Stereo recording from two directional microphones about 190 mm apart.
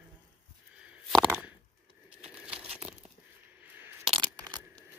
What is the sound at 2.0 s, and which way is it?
Crumpling, 5° right (ahead or behind).